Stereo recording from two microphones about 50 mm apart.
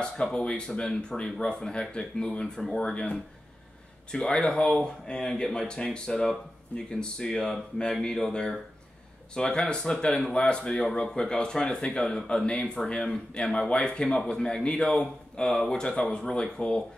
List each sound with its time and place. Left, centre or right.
0.0 s speech: centre